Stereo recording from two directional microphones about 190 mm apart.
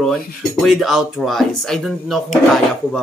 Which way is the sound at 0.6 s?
Centre (ahead or behind).